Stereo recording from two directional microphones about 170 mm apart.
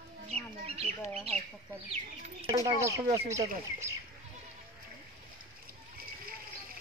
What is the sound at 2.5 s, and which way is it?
Speech, 20° right (ahead or behind).